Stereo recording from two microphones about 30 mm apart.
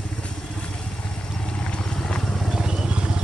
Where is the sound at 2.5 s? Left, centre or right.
Right.